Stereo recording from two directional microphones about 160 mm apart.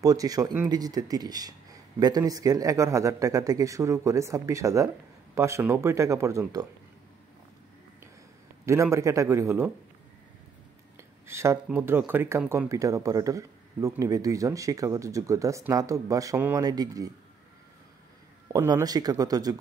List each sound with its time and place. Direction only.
0.0 s a man's voice: 25° right (ahead or behind)
8.9 s a man's voice: 20° right (ahead or behind)
11.0 s a man's voice: 15° right (ahead or behind)
18.5 s a man's voice: 20° right (ahead or behind)